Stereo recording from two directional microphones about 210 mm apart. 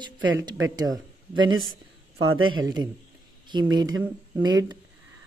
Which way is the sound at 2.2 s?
80° right.